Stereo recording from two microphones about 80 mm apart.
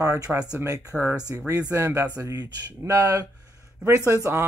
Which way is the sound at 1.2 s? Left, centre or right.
Right.